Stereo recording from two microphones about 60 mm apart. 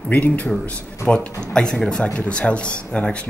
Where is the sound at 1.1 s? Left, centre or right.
Centre.